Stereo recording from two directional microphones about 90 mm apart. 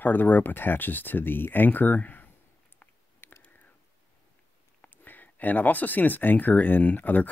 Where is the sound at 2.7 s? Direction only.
25° left (ahead or behind).